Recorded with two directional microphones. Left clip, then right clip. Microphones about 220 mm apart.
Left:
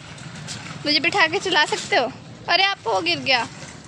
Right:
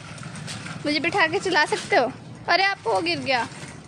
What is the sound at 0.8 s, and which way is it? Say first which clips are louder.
A woman's voice: left 3 dB; 5° right (ahead or behind).